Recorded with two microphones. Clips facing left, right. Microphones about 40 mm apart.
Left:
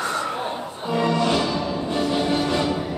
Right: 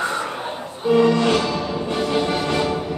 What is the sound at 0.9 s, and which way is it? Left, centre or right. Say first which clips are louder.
Music: right 4 dB; right.